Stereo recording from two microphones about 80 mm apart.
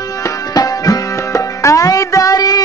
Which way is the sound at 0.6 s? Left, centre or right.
Left.